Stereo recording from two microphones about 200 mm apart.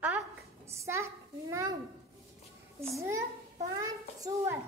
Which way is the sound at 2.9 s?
15° right (ahead or behind).